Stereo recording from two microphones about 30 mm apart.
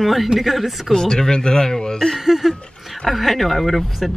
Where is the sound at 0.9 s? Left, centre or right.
Centre.